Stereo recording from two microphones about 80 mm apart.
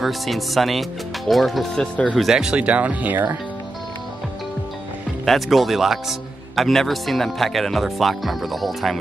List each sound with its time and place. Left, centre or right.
0.0 s speech: centre
1.8 s speech: centre
2.1 s speech: centre; by 3.3 s right
5.2 s speech: centre